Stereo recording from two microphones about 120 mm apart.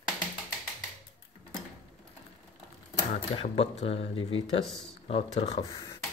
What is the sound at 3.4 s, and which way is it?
Speech, 65° left (ahead or behind).